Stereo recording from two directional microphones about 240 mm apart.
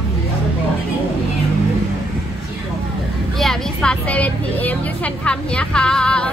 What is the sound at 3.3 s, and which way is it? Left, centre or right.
A woman's voice, centre.